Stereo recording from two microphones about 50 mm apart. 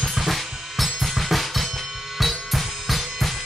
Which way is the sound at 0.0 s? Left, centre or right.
Centre.